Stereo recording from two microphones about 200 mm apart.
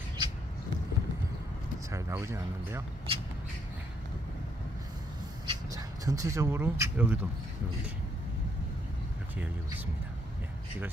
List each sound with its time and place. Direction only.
1.9 s speech: 15° right (ahead or behind)
3.1 s a sound: 25° right (ahead or behind)
5.5 s speech: 20° right (ahead or behind)